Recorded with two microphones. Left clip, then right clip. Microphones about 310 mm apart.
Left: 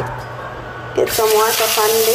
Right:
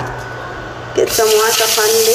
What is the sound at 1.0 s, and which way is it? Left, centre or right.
Speech, centre.